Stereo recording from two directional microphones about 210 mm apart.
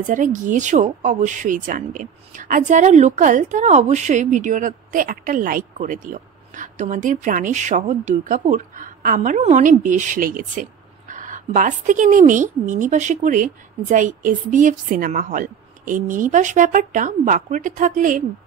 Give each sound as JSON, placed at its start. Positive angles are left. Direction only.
{"t": 0.0, "sound": "speech", "side_deg": -40}